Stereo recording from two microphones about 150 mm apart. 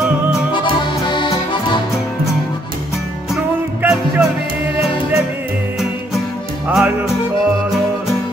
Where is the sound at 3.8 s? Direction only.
5° right (ahead or behind).